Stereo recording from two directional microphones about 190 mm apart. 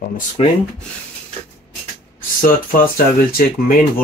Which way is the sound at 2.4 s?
45° left (ahead or behind).